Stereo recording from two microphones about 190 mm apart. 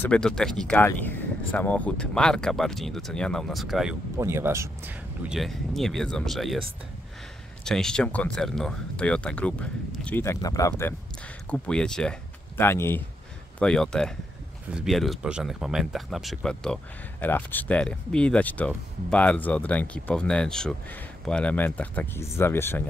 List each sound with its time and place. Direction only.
0.0 s speech: 5° left (ahead or behind)
4.2 s speech: 15° right (ahead or behind)
5.3 s speech: centre (ahead or behind)
7.6 s speech: 5° left (ahead or behind)
11.5 s speech: 5° left (ahead or behind)